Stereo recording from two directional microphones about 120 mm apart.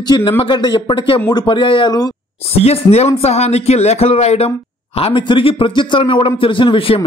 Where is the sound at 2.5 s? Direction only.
60° left (ahead or behind).